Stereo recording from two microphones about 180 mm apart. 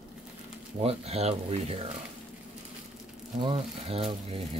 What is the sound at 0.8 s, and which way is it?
Speech, 35° right (ahead or behind).